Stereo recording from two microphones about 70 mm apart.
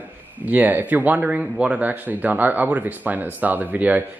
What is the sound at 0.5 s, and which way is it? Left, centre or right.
Speech, right.